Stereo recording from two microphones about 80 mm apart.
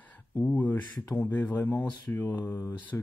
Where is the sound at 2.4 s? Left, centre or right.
Left.